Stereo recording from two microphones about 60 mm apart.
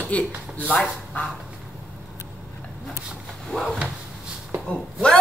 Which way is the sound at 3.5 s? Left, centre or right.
Centre.